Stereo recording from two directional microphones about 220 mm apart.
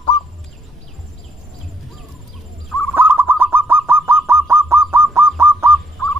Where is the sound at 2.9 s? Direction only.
10° right (ahead or behind).